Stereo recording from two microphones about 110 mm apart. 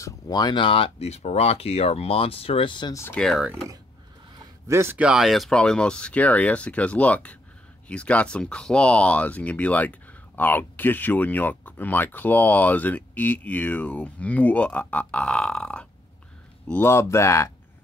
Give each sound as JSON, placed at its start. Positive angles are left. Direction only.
{"t": 0.0, "sound": "speech", "side_deg": 35}
{"t": 2.9, "sound": "speech", "side_deg": 25}
{"t": 3.2, "sound": "speech", "side_deg": 5}
{"t": 4.6, "sound": "speech", "side_deg": -25}
{"t": 4.9, "sound": "speech", "side_deg": -5}
{"t": 16.8, "sound": "speech", "side_deg": 25}